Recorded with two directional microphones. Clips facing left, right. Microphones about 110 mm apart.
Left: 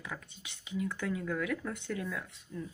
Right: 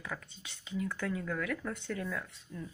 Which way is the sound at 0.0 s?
15° left (ahead or behind).